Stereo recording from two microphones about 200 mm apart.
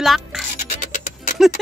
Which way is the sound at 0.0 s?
Centre (ahead or behind).